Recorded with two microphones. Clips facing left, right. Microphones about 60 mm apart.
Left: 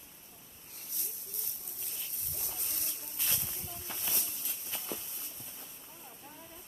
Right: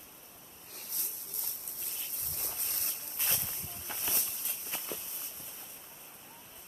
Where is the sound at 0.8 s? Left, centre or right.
Right.